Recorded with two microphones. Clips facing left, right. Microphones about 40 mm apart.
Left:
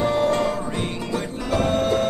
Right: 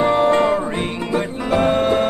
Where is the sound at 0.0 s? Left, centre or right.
Right.